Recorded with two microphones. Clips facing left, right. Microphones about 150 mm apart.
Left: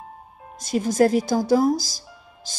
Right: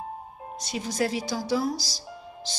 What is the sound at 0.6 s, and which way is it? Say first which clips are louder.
Speech: left 9 dB; 45° left (ahead or behind).